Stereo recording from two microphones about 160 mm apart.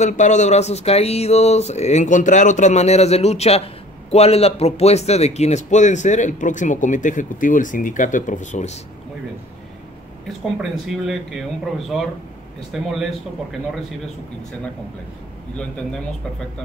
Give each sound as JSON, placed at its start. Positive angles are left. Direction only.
{"t": 0.0, "sound": "speech", "side_deg": 50}
{"t": 10.2, "sound": "speech", "side_deg": 0}